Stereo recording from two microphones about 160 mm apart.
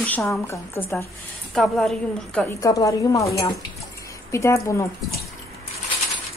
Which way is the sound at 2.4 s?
20° left (ahead or behind).